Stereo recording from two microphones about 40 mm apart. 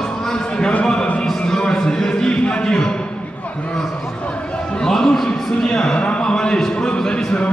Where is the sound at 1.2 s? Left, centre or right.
Centre.